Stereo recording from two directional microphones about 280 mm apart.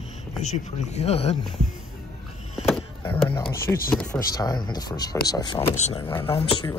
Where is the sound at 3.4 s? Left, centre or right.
Centre.